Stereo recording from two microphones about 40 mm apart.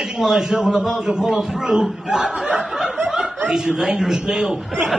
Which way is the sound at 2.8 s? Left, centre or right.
Centre.